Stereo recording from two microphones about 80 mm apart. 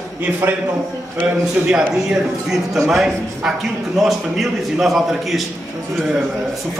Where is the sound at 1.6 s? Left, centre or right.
Centre.